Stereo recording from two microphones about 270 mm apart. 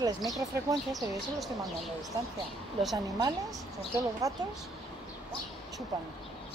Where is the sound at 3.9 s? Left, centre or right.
Centre.